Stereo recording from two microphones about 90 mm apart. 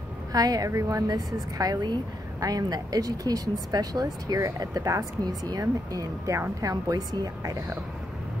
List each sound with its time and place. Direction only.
0.3 s speech: 45° right (ahead or behind)